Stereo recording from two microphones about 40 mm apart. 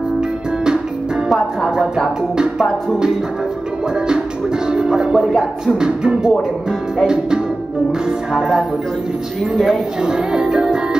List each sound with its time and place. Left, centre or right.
2.3 s speech: centre
4.6 s music: centre
5.4 s speech: centre
8.3 s music: centre
9.7 s speech: centre